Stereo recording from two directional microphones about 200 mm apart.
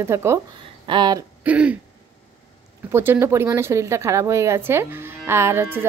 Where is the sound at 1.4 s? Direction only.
5° right (ahead or behind).